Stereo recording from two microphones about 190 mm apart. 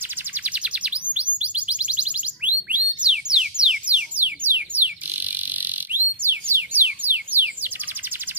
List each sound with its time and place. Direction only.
0.4 s chirp: 5° right (ahead or behind)
6.2 s music: 10° right (ahead or behind)